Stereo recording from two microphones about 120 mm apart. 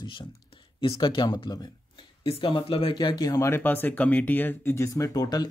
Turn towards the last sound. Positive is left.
turn(degrees=30)  # may be behind; listen again after turning